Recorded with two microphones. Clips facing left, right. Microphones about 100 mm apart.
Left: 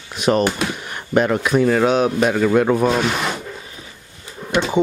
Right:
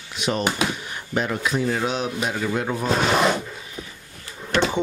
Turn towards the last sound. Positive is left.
turn(degrees=15)  # may be behind; listen again after turning